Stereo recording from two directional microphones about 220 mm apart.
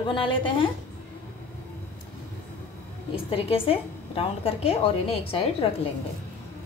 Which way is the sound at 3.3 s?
25° left (ahead or behind).